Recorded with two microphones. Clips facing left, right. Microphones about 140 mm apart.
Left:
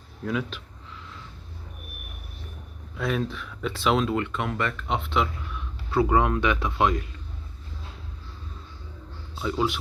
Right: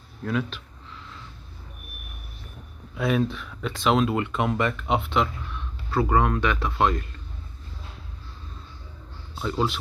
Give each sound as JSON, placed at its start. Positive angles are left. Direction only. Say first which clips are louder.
{"t": 0.2, "sound": "speech", "louder": "right 1 dB", "side_deg": 10}
{"t": 3.0, "sound": "speech", "louder": "right 4 dB", "side_deg": -5}
{"t": 4.1, "sound": "speech", "louder": "right 2 dB", "side_deg": -15}
{"t": 5.1, "sound": "speech", "louder": "right 1 dB", "side_deg": 0}
{"t": 5.9, "sound": "speech", "louder": "left 1 dB", "side_deg": 15}
{"t": 9.4, "sound": "speech", "louder": "even", "side_deg": 5}